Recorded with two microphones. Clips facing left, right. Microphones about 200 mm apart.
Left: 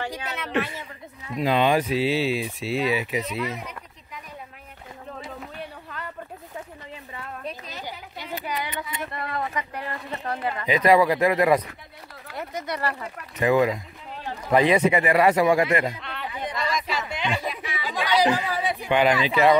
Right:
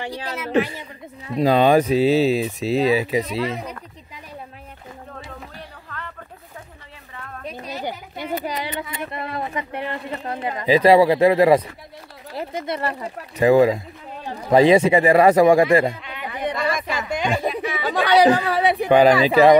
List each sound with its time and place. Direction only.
1.3 s speech: 40° right (ahead or behind)
7.5 s a sound: 55° right (ahead or behind); by 8.8 s 35° right (ahead or behind)
9.1 s speech: 20° right (ahead or behind)
16.0 s a sound: 10° right (ahead or behind)
16.3 s a sound: 65° right (ahead or behind); by 17.8 s 45° right (ahead or behind)
17.8 s speech: 65° right (ahead or behind)
18.2 s speech: 35° right (ahead or behind)
18.5 s speech: 70° right (ahead or behind)
18.9 s speech: 40° right (ahead or behind)